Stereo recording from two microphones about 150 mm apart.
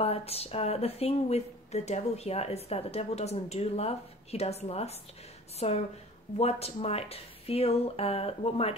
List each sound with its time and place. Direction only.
0.0 s speech: 40° left (ahead or behind)